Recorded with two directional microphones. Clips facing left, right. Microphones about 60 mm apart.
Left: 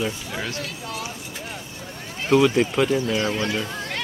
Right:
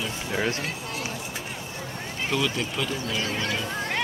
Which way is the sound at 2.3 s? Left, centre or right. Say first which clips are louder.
Left 10 dB; left.